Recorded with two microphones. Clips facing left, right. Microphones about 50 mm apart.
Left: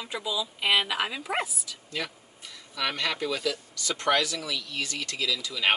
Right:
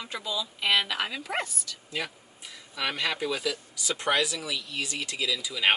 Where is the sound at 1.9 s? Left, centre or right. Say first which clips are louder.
Even; centre.